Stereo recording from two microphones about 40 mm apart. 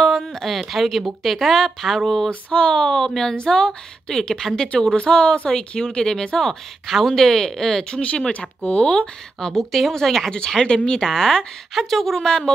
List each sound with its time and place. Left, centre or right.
0.0 s speech: centre
2.2 s a woman's voice: left
6.4 s speech: centre
8.0 s a woman's voice: left
9.4 s a woman's voice: centre
12.3 s speech: centre